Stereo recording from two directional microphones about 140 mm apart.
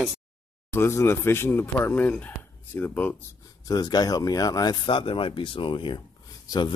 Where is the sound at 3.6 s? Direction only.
30° left (ahead or behind).